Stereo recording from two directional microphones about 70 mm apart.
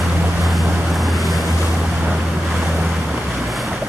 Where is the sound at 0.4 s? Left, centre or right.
Centre.